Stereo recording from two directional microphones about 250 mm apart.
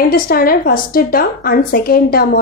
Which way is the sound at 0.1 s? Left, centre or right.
Left.